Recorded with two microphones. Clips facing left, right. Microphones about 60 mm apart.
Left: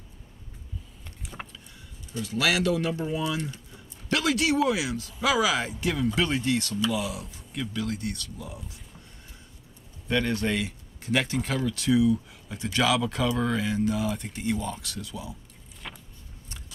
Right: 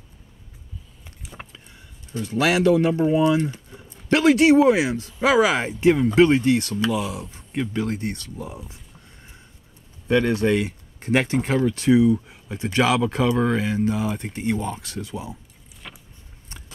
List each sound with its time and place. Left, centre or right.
1.2 s vehicle: centre
2.1 s speech: right
10.0 s speech: centre
10.5 s speech: right
15.8 s vehicle: centre